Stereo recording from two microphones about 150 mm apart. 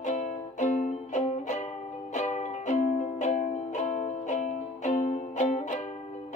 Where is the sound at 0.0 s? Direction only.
55° left (ahead or behind).